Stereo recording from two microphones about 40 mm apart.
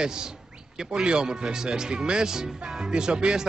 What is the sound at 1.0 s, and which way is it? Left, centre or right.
A man's voice, right.